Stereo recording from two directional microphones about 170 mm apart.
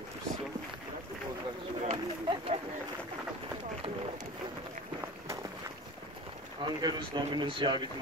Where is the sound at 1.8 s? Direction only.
35° right (ahead or behind).